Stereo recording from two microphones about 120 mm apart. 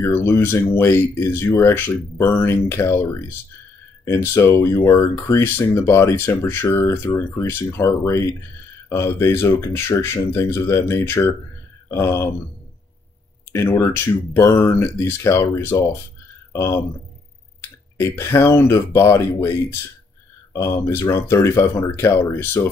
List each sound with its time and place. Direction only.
0.0 s speech: 25° left (ahead or behind)
13.5 s speech: 20° left (ahead or behind)